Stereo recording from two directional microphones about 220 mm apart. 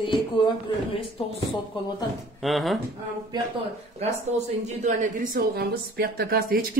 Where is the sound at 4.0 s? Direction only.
30° right (ahead or behind).